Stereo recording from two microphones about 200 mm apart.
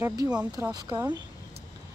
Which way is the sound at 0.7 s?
20° right (ahead or behind).